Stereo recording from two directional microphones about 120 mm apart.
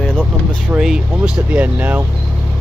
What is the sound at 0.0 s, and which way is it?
Speech, 5° right (ahead or behind).